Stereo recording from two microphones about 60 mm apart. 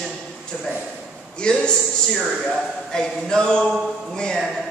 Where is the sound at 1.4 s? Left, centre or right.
Centre.